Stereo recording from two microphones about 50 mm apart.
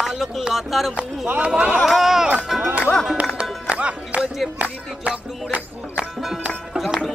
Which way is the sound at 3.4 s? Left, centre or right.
Right.